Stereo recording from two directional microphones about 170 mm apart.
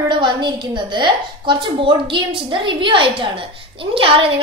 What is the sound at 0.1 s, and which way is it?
A woman's voice, 25° right (ahead or behind).